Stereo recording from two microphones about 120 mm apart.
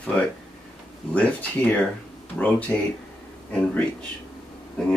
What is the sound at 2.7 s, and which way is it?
Speech, 10° left (ahead or behind).